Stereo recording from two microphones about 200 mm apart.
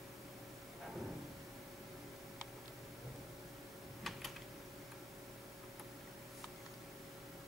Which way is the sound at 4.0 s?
Centre (ahead or behind).